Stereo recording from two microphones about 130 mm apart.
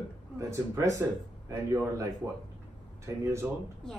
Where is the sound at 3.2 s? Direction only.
20° right (ahead or behind).